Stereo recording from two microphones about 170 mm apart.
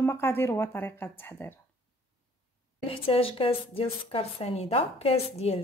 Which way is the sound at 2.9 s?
35° left (ahead or behind).